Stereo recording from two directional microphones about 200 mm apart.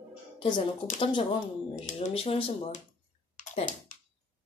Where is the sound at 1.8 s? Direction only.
35° left (ahead or behind).